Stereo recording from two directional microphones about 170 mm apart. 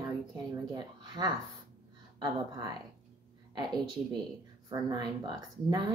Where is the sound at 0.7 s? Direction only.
25° right (ahead or behind).